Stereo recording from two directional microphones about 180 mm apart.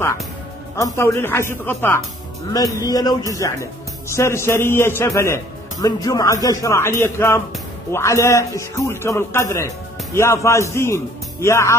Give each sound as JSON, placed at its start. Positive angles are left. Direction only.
{"t": 0.7, "sound": "a man's voice", "side_deg": 15}